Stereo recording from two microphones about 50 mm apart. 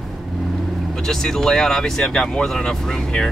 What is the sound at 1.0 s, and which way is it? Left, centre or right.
Speech, centre.